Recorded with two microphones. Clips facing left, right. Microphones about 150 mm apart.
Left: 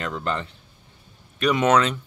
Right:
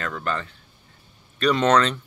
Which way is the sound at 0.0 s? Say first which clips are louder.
Left 1 dB; 20° left (ahead or behind).